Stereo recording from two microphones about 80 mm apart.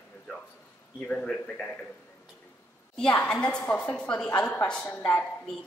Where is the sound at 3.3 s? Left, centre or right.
Centre.